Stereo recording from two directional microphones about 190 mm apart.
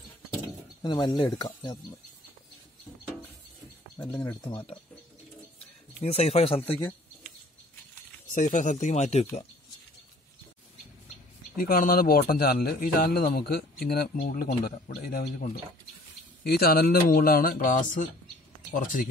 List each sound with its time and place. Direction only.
0.8 s speech: 25° left (ahead or behind)
4.2 s speech: 25° left (ahead or behind)
6.0 s speech: 35° left (ahead or behind)
8.3 s speech: 40° left (ahead or behind)
11.5 s a man's voice: 50° left (ahead or behind)